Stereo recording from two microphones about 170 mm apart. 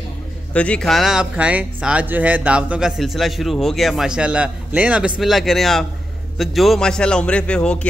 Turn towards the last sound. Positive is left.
turn(degrees=5)  # may be behind; listen again after turning